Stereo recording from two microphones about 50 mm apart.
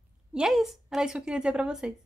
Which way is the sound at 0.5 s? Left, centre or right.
Centre.